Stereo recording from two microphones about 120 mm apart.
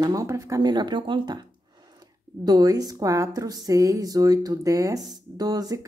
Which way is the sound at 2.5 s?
30° right (ahead or behind).